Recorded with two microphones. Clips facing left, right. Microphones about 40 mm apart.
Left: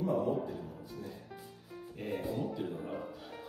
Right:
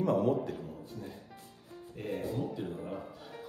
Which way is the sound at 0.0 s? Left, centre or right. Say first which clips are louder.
Right 3 dB; right.